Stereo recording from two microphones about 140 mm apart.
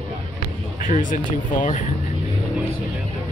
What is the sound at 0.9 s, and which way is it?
Speech, 70° left (ahead or behind).